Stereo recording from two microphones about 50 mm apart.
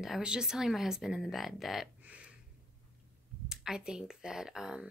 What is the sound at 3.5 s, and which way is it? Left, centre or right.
Speech, centre.